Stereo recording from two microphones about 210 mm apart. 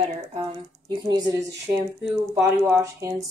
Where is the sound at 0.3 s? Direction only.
25° right (ahead or behind).